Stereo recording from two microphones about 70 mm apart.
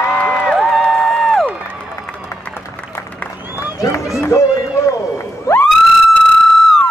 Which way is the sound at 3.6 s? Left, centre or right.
Left.